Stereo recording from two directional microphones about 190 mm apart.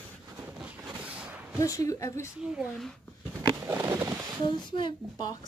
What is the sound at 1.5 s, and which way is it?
Speech, 15° left (ahead or behind).